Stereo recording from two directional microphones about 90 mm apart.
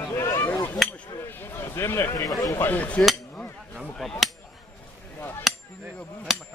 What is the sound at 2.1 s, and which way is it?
Speech, 40° left (ahead or behind).